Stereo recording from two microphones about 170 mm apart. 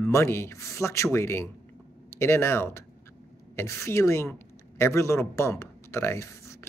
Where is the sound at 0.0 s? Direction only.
15° left (ahead or behind).